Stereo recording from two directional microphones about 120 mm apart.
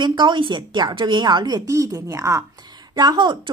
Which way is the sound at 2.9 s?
40° right (ahead or behind).